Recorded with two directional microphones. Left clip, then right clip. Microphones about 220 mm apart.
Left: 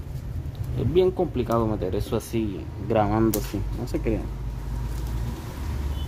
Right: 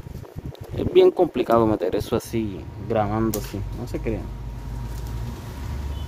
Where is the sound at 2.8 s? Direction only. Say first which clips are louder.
Left 1 dB; centre (ahead or behind).